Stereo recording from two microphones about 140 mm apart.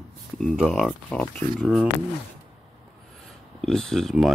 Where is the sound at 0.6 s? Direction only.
5° right (ahead or behind).